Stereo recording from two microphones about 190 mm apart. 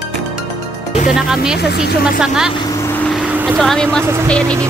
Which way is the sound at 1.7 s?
60° left (ahead or behind).